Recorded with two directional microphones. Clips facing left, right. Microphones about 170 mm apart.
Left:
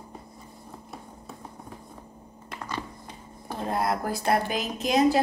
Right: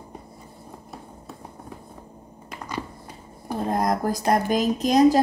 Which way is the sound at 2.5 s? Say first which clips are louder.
Right 2 dB; 10° right (ahead or behind).